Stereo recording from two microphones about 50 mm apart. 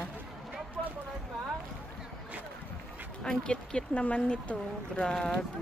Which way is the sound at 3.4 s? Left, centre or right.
Centre.